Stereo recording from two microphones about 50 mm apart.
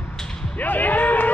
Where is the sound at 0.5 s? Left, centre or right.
Left.